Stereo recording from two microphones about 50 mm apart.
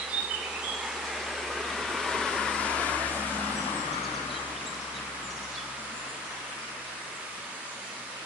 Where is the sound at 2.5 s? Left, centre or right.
Left.